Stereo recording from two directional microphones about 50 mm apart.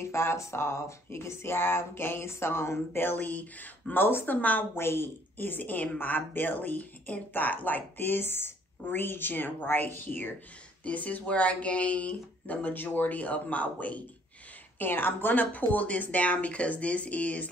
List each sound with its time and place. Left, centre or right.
0.0 s a sound: left
3.2 s speech: left
4.4 s speech: left
4.7 s a woman's voice: left
10.8 s speech: left
14.8 s speech: left